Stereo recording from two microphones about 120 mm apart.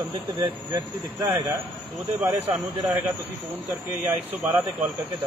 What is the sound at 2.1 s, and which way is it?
Speech, 15° right (ahead or behind).